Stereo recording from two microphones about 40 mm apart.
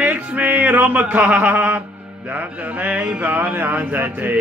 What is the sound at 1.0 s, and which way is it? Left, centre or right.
Mantra, right.